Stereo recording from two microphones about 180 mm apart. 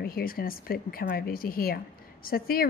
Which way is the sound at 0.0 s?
55° left (ahead or behind).